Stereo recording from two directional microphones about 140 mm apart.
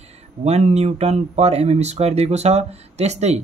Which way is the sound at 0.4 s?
50° right (ahead or behind).